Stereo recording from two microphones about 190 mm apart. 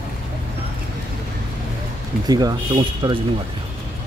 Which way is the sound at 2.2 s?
20° right (ahead or behind).